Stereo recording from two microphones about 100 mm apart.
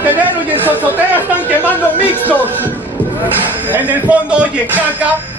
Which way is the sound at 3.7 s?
15° right (ahead or behind).